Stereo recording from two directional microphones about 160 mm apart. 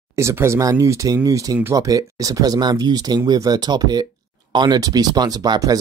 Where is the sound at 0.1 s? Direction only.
15° right (ahead or behind).